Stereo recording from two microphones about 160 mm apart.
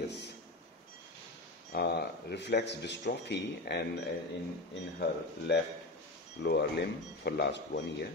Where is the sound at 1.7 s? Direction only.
90° left.